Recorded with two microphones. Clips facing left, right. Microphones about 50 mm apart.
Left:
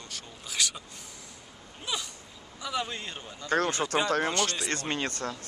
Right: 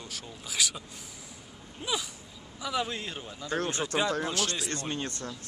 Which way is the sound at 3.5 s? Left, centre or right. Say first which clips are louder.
Left 4 dB; left.